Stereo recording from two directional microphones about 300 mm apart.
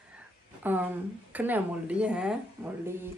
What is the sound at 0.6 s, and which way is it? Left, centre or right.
Speech, centre.